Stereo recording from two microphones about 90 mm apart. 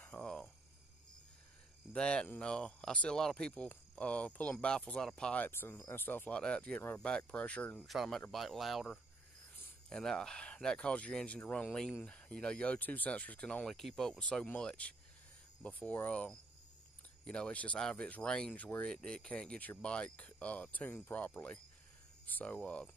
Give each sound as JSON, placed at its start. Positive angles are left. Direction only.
{"t": 0.0, "sound": "frog", "side_deg": 15}
{"t": 2.0, "sound": "speech", "side_deg": 10}
{"t": 5.5, "sound": "speech", "side_deg": 25}
{"t": 7.8, "sound": "speech", "side_deg": 0}